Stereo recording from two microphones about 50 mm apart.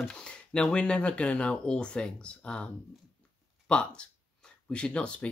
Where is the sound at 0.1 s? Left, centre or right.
Centre.